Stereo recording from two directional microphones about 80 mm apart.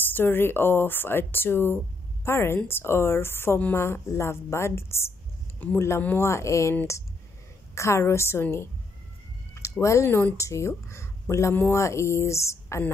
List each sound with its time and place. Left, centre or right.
0.1 s a woman's voice: left
7.7 s a woman's voice: left